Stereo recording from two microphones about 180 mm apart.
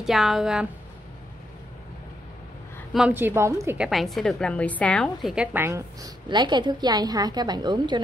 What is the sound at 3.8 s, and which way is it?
A woman's voice, centre (ahead or behind).